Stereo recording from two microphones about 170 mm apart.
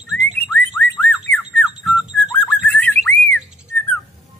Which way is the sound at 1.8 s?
5° right (ahead or behind).